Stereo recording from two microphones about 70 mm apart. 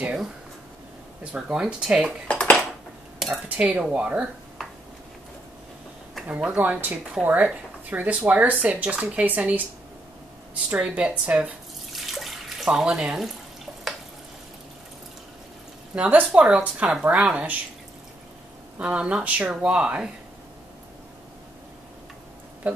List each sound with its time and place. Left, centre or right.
0.0 s a sound: centre
1.2 s speech: centre
2.2 s dishes: centre
3.4 s speech: right
6.2 s speech: centre
10.5 s speech: centre
11.9 s water: centre
15.9 s speech: centre
18.8 s speech: centre